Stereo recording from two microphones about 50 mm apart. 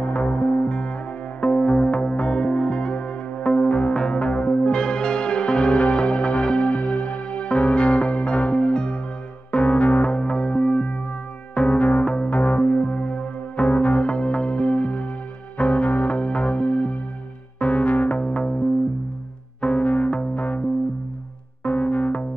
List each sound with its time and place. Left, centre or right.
0.0 s music: left
21.6 s music: left